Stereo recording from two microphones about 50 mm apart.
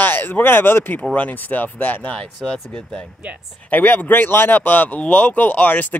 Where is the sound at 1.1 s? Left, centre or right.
Left.